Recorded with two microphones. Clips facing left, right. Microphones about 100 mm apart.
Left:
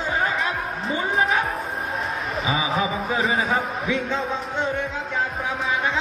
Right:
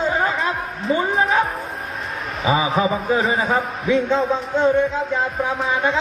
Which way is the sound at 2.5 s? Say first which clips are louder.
Right 6 dB; 35° right (ahead or behind).